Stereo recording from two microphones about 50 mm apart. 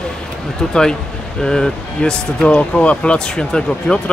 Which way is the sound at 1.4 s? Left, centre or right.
Centre.